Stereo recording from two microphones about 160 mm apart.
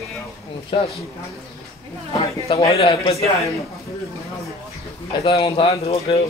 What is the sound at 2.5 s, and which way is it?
Speech, 40° left (ahead or behind).